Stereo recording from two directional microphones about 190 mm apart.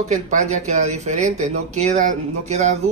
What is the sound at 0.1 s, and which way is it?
Speech, 40° right (ahead or behind).